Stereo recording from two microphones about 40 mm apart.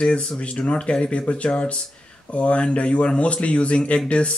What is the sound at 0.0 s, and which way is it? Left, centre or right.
Speech, left.